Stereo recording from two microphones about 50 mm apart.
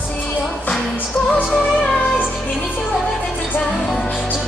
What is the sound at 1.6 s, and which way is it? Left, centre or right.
Music, centre.